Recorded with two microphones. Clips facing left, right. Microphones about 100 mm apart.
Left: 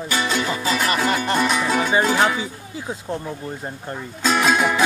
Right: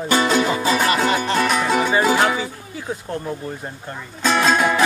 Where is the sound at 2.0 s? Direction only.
5° right (ahead or behind).